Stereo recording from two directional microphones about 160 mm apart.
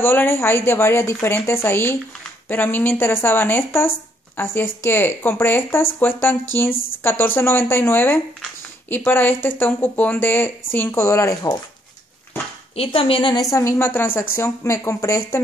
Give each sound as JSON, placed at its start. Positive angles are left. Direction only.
{"t": 0.0, "sound": "speech", "side_deg": 15}
{"t": 12.7, "sound": "speech", "side_deg": 35}